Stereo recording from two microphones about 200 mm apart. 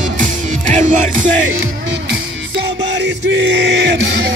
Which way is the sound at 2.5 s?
60° right (ahead or behind).